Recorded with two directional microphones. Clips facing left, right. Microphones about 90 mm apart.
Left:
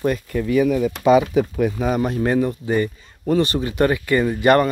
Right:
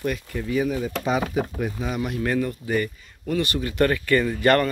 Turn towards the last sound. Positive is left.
turn(degrees=20)  # may be behind; listen again after turning